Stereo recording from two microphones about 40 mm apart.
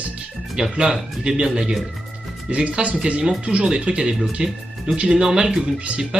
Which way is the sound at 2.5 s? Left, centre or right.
Right.